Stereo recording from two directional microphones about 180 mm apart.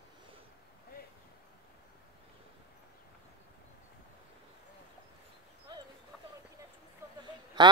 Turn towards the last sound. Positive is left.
turn(degrees=-25)  # may be behind; listen again after turning